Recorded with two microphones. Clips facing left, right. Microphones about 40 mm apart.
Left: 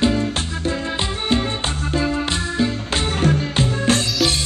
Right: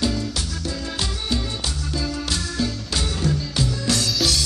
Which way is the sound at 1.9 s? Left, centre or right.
Left.